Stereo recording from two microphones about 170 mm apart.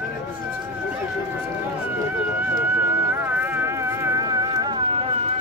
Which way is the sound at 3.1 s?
10° right (ahead or behind).